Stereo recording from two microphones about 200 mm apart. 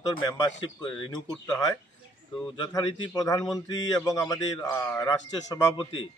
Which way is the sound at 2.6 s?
20° left (ahead or behind).